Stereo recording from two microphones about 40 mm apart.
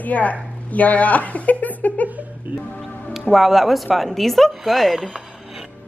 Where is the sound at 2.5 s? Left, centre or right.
Right.